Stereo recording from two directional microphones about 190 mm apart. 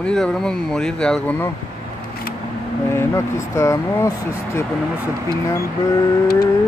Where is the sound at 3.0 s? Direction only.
15° left (ahead or behind).